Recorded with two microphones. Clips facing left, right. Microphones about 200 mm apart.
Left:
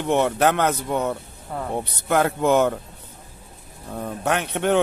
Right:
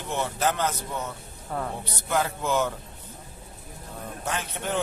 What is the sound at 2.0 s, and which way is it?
Speech, 60° left (ahead or behind).